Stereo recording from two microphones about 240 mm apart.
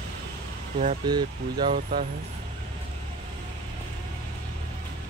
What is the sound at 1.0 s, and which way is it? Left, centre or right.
Speech, centre.